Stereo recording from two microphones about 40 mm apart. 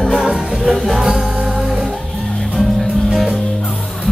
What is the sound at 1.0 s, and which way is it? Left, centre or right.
Music, centre.